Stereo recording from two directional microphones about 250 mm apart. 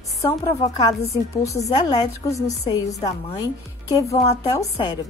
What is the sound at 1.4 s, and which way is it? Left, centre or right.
Speech, left.